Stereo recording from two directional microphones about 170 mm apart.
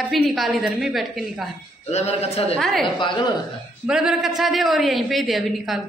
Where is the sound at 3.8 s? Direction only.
5° right (ahead or behind).